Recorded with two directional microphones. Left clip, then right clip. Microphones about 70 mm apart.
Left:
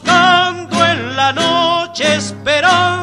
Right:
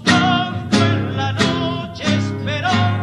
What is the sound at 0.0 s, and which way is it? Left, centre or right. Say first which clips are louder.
Music: left 6 dB; right.